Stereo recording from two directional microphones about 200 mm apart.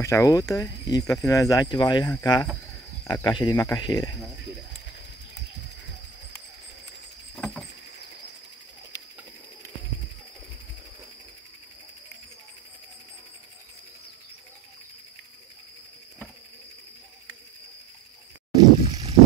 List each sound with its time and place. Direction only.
0.0 s speech: 15° left (ahead or behind)
7.3 s patter: 5° left (ahead or behind)
18.9 s a sound: 20° right (ahead or behind)